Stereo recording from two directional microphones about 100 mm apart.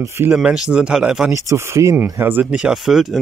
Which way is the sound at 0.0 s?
20° right (ahead or behind).